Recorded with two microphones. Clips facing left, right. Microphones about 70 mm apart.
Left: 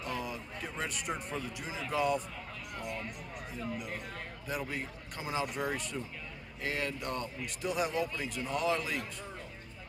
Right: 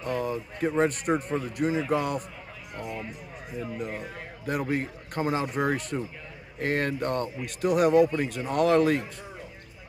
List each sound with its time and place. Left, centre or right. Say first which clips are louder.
0.1 s a man's voice: right 11 dB; right
2.8 s music: right 5 dB; centre
4.5 s speech: right 10 dB; right
7.4 s a man's voice: right 11 dB; right